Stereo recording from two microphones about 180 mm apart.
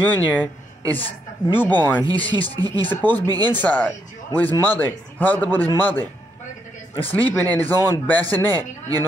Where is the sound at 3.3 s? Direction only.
25° right (ahead or behind).